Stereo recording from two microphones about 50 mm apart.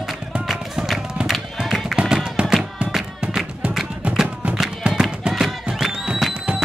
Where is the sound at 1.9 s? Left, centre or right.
Centre.